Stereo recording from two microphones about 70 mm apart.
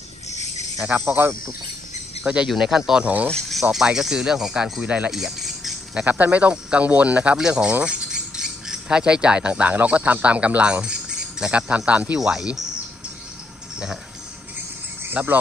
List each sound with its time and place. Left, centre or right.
0.9 s speech: right
2.2 s speech: centre
3.0 s speech: right
3.3 s speech: centre
3.7 s speech: centre
4.8 s speech: right
5.1 s music: centre
6.0 s speech: right
15.2 s speech: centre